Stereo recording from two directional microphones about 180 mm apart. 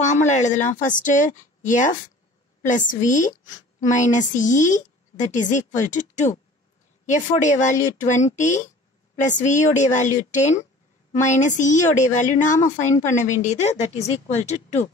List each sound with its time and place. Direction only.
0.0 s a woman's voice: 40° left (ahead or behind)